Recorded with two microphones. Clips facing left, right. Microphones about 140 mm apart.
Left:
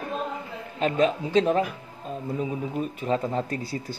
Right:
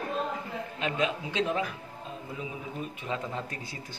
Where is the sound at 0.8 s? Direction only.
40° left (ahead or behind).